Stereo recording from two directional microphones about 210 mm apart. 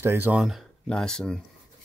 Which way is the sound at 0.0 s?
10° right (ahead or behind).